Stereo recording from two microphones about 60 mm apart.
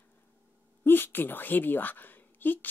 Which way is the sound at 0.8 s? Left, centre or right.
Left.